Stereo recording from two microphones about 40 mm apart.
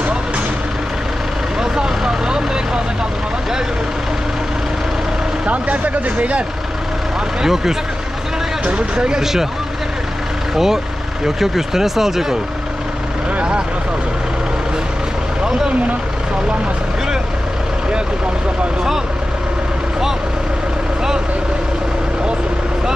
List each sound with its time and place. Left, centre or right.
1.6 s vehicle: centre
5.5 s speech: right
7.4 s speech: centre
8.6 s speech: right
9.2 s speech: centre
10.5 s speech: centre
15.4 s vehicle: centre